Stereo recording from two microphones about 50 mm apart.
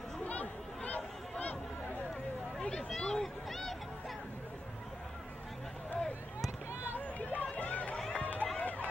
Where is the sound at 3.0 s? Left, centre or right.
Centre.